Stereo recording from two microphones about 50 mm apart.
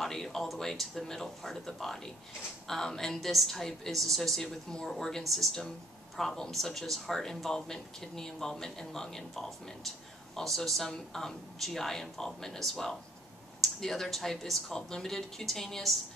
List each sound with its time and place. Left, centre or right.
0.0 s a woman's voice: centre